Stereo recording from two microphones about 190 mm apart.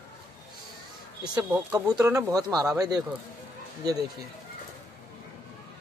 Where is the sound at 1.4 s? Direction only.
15° right (ahead or behind).